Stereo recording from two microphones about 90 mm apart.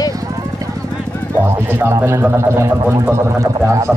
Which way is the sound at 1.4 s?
25° right (ahead or behind).